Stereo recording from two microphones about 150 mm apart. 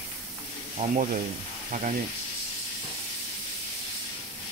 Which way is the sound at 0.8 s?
70° right (ahead or behind).